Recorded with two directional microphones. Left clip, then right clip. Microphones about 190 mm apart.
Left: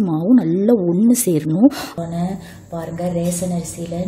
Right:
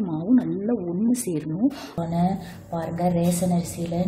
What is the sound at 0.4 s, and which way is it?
A woman's voice, 50° left (ahead or behind).